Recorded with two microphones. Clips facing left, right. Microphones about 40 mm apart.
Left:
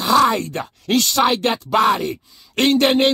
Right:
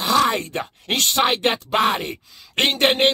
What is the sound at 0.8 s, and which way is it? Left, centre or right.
Speech, right.